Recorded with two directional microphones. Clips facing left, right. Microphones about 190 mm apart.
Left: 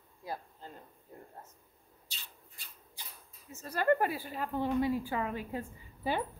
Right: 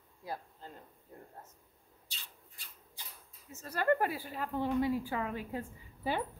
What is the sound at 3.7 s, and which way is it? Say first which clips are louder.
A woman's voice: left 2 dB; 20° left (ahead or behind).